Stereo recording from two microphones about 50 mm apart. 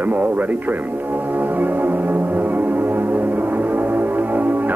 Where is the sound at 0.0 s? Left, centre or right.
Right.